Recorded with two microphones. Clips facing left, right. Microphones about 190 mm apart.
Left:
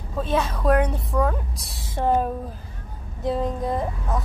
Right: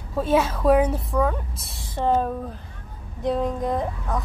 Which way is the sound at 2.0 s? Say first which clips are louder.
Even; 10° left (ahead or behind).